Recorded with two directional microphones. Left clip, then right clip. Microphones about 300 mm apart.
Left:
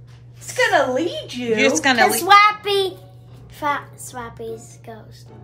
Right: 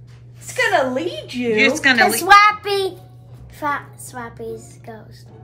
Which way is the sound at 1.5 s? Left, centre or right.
Centre.